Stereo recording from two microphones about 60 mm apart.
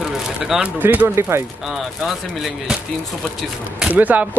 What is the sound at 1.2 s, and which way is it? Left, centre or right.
Speech, right.